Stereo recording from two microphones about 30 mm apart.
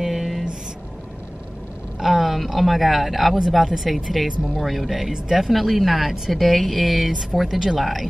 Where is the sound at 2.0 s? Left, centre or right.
Centre.